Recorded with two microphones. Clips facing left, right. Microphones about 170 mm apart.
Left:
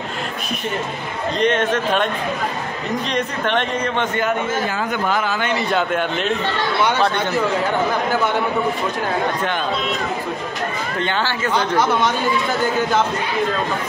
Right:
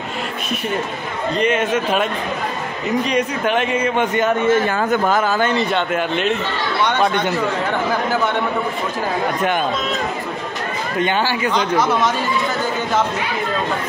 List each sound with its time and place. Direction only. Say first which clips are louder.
1.4 s a man's voice: even; 5° right (ahead or behind)
3.1 s a man's voice: right 3 dB; 10° right (ahead or behind)
4.6 s speech: right 4 dB; 50° right (ahead or behind)
5.7 s speech: even; centre (ahead or behind)
11.0 s a man's voice: right 4 dB; 15° right (ahead or behind)
11.5 s speech: left 1 dB; centre (ahead or behind)